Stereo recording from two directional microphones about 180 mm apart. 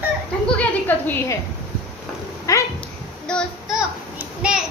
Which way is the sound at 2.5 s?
20° left (ahead or behind).